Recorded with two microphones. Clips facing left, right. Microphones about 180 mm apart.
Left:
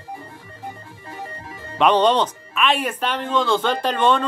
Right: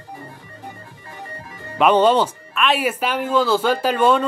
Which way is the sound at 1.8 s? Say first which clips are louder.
Right 2 dB; 5° right (ahead or behind).